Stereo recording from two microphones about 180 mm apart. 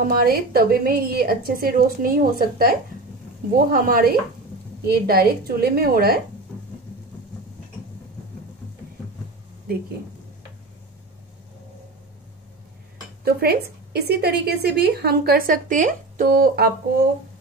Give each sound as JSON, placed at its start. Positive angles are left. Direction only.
{"t": 0.0, "sound": "speech", "side_deg": -55}
{"t": 13.2, "sound": "speech", "side_deg": -60}